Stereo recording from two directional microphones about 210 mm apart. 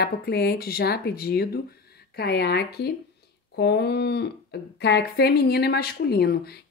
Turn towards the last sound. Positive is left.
turn(degrees=50)  # may be behind; listen again after turning